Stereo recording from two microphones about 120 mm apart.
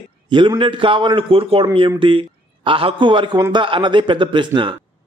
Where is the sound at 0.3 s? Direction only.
40° right (ahead or behind).